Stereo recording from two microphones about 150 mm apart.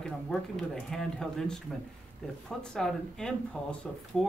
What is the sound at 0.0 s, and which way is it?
Speech, 5° left (ahead or behind).